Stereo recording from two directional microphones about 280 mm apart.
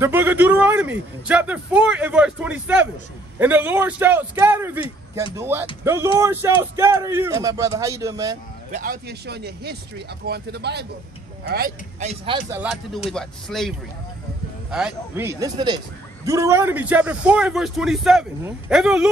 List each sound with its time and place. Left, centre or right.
0.0 s a man's voice: centre
8.7 s speech: right
12.4 s a man's voice: centre